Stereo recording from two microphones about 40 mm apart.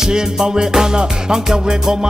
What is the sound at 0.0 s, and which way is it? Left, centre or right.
Music, centre.